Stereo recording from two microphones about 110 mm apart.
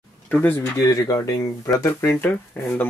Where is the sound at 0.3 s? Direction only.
15° left (ahead or behind).